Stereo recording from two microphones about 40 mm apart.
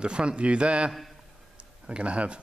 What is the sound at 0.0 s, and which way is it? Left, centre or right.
Speech, right.